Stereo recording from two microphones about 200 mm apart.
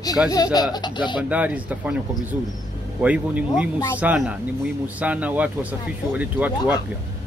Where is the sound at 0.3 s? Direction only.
20° left (ahead or behind).